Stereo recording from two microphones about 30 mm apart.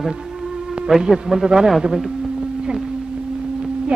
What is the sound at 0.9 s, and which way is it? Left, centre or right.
Speech, centre.